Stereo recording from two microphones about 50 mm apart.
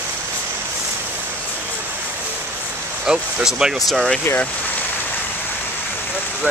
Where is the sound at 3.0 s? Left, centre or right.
Centre.